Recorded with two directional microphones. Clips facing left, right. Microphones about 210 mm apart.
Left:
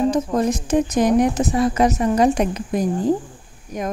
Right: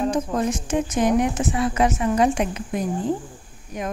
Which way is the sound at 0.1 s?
35° left (ahead or behind).